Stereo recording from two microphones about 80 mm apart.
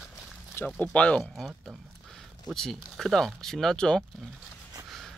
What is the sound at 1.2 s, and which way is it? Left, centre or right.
Speech, centre.